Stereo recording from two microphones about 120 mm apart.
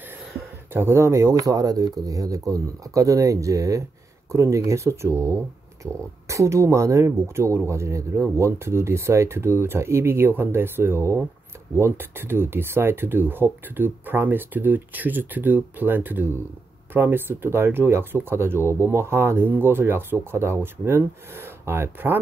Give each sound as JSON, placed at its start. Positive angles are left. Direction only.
{"t": 0.7, "sound": "speech", "side_deg": -20}